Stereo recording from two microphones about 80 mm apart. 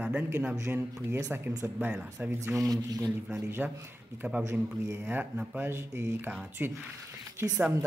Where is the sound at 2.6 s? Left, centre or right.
Right.